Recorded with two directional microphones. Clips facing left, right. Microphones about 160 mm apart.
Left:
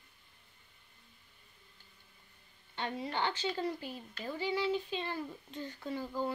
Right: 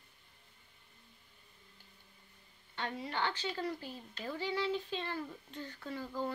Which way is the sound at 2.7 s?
20° left (ahead or behind).